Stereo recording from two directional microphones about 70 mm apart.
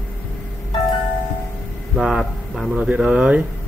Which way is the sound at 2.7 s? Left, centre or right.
Centre.